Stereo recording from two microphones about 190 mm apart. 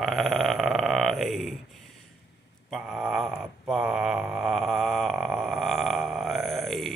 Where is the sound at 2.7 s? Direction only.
5° right (ahead or behind).